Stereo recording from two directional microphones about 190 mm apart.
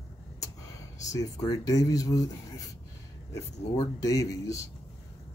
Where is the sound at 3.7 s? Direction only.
20° left (ahead or behind).